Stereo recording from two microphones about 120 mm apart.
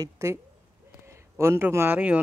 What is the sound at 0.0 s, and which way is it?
Speech, 25° right (ahead or behind).